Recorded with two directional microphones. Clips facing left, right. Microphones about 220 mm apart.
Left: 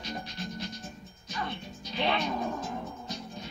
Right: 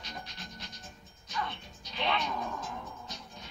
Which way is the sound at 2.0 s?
30° left (ahead or behind).